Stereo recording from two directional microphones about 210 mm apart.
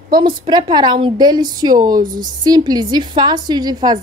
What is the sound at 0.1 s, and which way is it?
A woman's voice, 20° right (ahead or behind).